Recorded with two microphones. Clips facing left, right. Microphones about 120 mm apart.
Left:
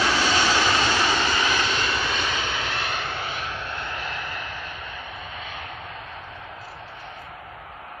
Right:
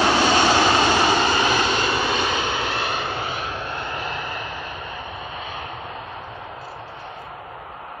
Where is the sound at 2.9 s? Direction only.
15° right (ahead or behind).